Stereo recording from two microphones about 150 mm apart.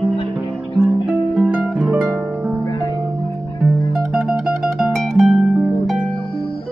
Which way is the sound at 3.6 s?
5° right (ahead or behind).